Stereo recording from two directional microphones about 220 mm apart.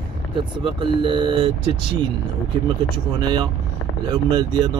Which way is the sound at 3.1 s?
20° right (ahead or behind).